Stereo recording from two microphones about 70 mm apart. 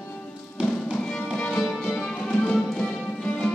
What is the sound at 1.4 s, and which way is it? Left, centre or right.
Music, centre.